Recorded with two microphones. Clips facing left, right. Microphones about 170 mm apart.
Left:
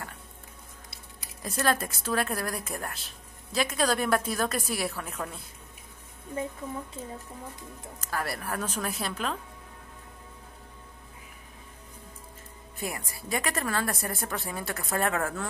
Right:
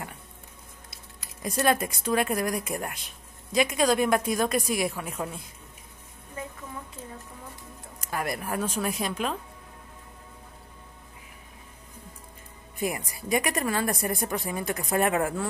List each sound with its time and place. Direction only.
1.5 s a woman's voice: 15° right (ahead or behind)
8.0 s a woman's voice: 15° right (ahead or behind)
12.7 s a woman's voice: 15° right (ahead or behind)